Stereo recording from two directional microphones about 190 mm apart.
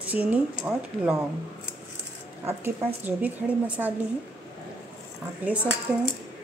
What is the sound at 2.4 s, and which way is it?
Speech, 10° right (ahead or behind).